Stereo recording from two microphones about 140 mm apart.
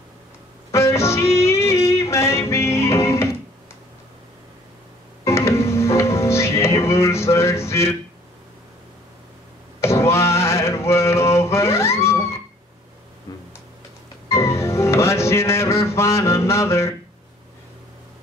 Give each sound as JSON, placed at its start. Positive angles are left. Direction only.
{"t": 0.7, "sound": "music", "side_deg": 20}
{"t": 5.2, "sound": "music", "side_deg": 20}
{"t": 9.8, "sound": "a sound", "side_deg": 20}
{"t": 14.3, "sound": "music", "side_deg": 20}